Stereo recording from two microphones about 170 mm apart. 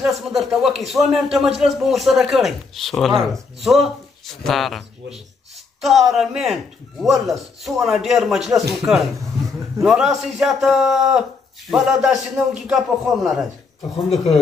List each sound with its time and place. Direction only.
0.0 s speech: centre (ahead or behind)